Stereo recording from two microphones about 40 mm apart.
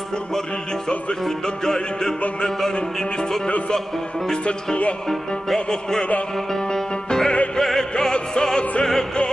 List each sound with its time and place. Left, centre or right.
1.2 s music: centre
4.3 s speech: centre
5.7 s music: centre
7.9 s music: centre